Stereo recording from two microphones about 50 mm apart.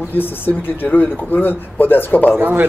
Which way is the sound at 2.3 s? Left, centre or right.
Right.